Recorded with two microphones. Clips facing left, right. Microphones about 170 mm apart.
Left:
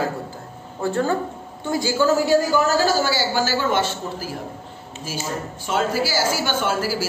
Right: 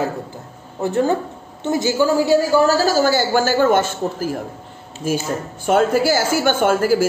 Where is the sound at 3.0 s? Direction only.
50° right (ahead or behind).